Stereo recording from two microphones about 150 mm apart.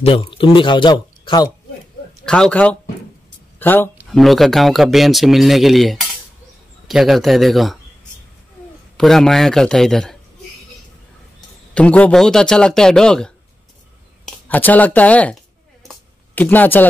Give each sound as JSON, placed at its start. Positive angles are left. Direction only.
{"t": 0.0, "sound": "speech", "side_deg": 35}
{"t": 2.2, "sound": "a man's voice", "side_deg": 5}
{"t": 3.3, "sound": "a sound", "side_deg": 15}
{"t": 4.1, "sound": "speech", "side_deg": 0}
{"t": 8.9, "sound": "speech", "side_deg": 0}
{"t": 11.7, "sound": "speech", "side_deg": 10}
{"t": 15.9, "sound": "a sound", "side_deg": 10}